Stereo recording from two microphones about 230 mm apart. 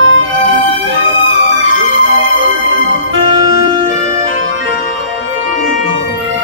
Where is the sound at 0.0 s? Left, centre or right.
Right.